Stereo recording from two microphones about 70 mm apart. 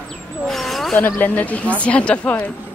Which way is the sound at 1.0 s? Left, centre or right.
Left.